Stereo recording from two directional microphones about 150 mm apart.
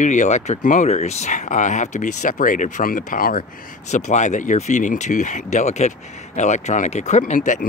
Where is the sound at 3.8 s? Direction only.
50° left (ahead or behind).